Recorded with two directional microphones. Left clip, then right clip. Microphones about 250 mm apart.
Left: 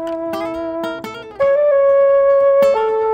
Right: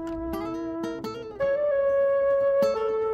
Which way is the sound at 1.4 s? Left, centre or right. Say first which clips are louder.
Left 11 dB; centre.